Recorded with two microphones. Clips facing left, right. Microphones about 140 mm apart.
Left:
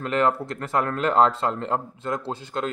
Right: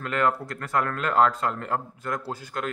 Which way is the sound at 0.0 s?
25° left (ahead or behind).